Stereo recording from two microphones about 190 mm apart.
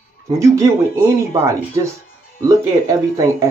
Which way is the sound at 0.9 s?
15° right (ahead or behind).